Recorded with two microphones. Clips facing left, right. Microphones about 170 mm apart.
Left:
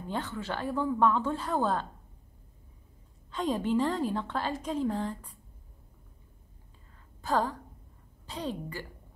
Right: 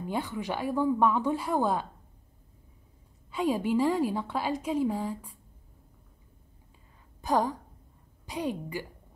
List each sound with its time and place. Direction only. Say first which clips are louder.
0.0 s a woman's voice: right 3 dB; 10° right (ahead or behind)
3.3 s a woman's voice: right 2 dB; 10° right (ahead or behind)
7.2 s a woman's voice: right 2 dB; 15° right (ahead or behind)